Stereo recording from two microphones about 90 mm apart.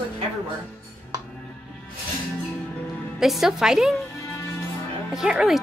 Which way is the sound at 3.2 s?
Centre (ahead or behind).